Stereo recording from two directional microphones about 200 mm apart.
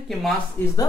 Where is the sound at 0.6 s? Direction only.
15° left (ahead or behind).